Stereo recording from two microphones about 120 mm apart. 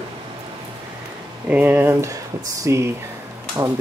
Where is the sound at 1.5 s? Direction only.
15° right (ahead or behind).